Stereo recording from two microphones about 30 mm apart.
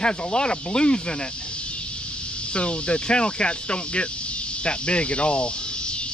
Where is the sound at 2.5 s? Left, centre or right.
Left.